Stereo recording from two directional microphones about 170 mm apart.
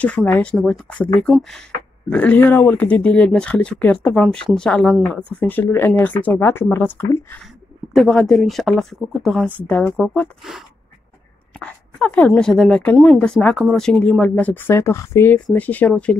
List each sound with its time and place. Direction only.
0.0 s speech: 10° left (ahead or behind)
7.9 s speech: centre (ahead or behind)
11.6 s speech: 5° left (ahead or behind)